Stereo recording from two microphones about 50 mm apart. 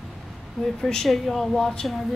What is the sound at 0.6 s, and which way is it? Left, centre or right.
Speech, centre.